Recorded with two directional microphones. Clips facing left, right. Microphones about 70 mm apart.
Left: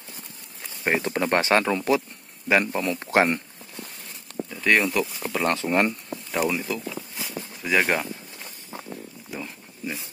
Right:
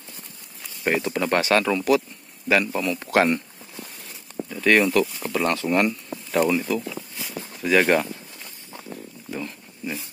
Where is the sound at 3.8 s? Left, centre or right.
Centre.